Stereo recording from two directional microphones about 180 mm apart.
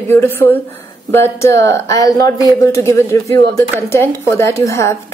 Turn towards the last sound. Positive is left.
turn(degrees=15)  # may be behind; listen again after turning